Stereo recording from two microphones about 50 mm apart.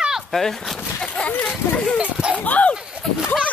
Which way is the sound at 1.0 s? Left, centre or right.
Left.